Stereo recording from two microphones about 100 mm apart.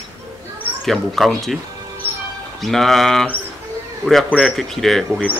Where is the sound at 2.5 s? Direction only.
Centre (ahead or behind).